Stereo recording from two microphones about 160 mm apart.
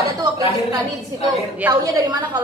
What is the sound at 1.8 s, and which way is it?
Speech, 25° right (ahead or behind).